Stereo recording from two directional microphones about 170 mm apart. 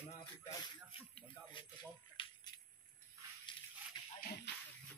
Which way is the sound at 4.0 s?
25° left (ahead or behind).